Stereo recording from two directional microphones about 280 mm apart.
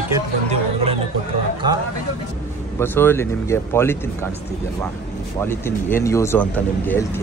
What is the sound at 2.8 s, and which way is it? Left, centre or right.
Speech, centre.